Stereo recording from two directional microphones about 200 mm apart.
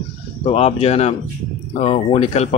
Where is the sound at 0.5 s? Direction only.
30° left (ahead or behind).